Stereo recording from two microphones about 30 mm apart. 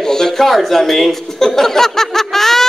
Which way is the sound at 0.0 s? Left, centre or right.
Centre.